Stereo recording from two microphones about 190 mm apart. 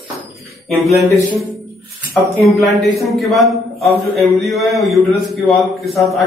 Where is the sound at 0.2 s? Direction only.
Centre (ahead or behind).